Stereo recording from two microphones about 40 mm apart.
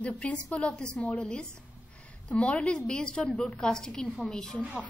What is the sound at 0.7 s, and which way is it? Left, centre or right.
Speech, centre.